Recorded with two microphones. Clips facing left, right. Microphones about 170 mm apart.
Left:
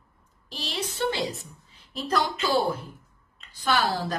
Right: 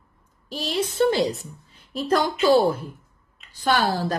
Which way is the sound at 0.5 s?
45° right (ahead or behind).